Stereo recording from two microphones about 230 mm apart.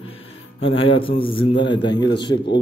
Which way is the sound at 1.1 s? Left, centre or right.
Left.